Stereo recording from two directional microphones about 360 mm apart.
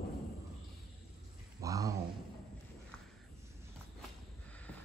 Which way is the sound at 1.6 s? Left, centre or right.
Centre.